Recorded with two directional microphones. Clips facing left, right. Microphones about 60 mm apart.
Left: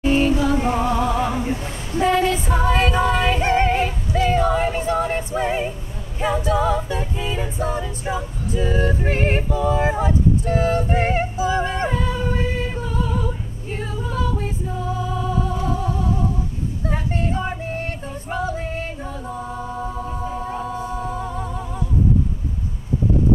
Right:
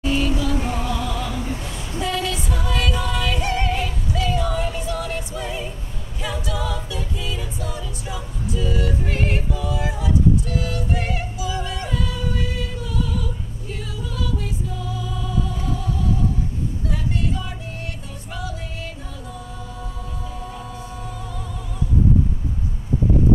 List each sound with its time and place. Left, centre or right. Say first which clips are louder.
0.0 s a sound: left 4 dB; left
6.2 s a capella: left 8 dB; left
16.9 s vehicle: left 3 dB; left
18.3 s music: left 8 dB; left
19.3 s a capella: left 7 dB; left